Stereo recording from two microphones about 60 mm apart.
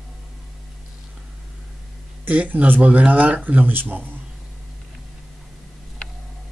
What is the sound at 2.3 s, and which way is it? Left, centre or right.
Speech, right.